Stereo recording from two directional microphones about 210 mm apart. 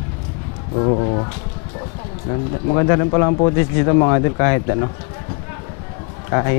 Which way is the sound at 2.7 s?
20° left (ahead or behind).